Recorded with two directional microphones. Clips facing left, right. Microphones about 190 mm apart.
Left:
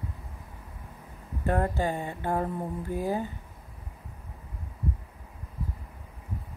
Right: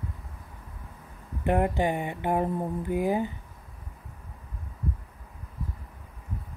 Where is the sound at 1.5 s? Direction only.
15° right (ahead or behind).